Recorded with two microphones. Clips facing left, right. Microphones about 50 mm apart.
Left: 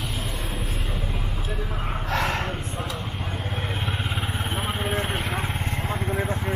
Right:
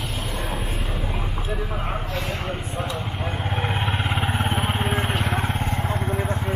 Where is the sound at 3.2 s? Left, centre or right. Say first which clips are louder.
Right 4 dB; right; by 6.5 s centre.